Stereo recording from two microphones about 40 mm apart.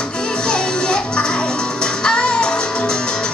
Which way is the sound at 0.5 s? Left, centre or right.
Left.